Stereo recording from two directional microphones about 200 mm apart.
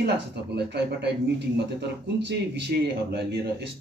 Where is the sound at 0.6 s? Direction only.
55° right (ahead or behind).